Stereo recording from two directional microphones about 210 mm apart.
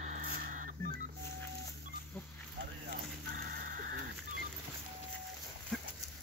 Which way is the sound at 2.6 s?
45° right (ahead or behind).